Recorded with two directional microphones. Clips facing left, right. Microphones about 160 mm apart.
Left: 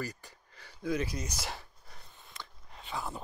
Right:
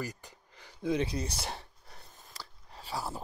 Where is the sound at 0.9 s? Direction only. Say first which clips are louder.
Right 3 dB; 30° right (ahead or behind).